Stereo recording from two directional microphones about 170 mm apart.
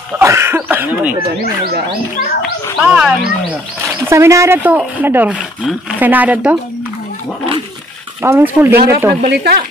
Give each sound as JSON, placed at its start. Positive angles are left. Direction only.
{"t": 0.2, "sound": "cough", "side_deg": -15}
{"t": 2.8, "sound": "speech", "side_deg": -5}
{"t": 3.8, "sound": "speech", "side_deg": -15}
{"t": 8.2, "sound": "speech", "side_deg": -10}
{"t": 8.7, "sound": "speech", "side_deg": -65}